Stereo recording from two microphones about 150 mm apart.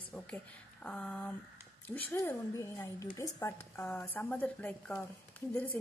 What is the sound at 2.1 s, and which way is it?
A woman's voice, 20° left (ahead or behind).